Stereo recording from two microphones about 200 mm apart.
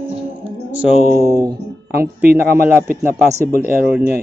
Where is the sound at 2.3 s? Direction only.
10° right (ahead or behind).